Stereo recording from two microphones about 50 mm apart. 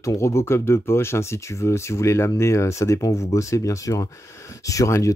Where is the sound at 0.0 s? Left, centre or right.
Left.